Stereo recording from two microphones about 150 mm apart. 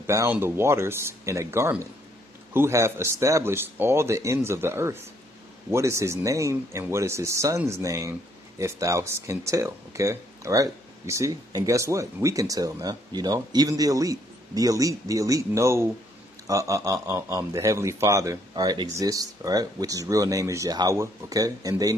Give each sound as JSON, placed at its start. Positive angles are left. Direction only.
{"t": 0.0, "sound": "speech", "side_deg": -20}